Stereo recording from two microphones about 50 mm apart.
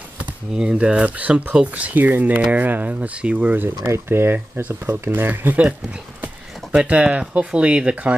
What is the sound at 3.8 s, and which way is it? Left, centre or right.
Speech, right.